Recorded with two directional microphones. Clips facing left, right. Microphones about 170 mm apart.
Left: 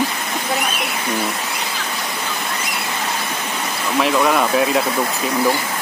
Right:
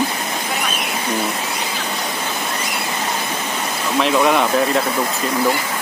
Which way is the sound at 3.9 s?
Centre (ahead or behind).